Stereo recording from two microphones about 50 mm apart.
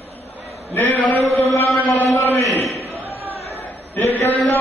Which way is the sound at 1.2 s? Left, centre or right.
Left.